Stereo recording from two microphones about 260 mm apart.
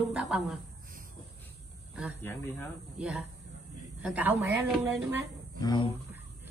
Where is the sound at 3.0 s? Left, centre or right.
Centre.